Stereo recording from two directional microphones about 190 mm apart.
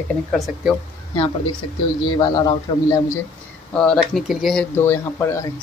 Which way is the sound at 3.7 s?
5° left (ahead or behind).